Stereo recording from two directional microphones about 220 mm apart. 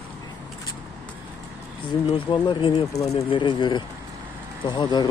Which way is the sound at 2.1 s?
25° left (ahead or behind).